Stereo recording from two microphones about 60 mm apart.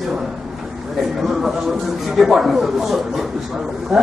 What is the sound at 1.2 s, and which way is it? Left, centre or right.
A man's voice, centre.